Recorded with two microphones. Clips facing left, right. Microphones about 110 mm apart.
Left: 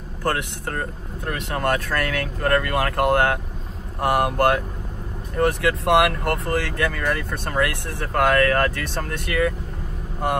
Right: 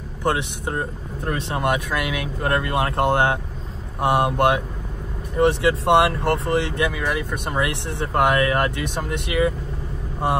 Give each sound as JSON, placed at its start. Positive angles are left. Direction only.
{"t": 0.2, "sound": "speech", "side_deg": -20}
{"t": 6.9, "sound": "speech", "side_deg": -10}